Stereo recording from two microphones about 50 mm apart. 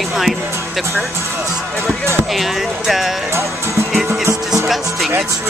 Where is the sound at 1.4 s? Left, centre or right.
Centre.